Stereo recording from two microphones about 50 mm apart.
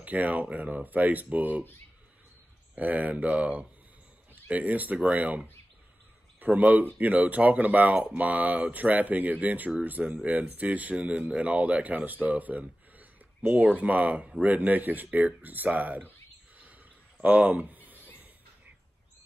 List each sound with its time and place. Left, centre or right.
0.0 s speech: right
2.7 s speech: right
6.4 s speech: right
17.2 s speech: right
17.9 s music: left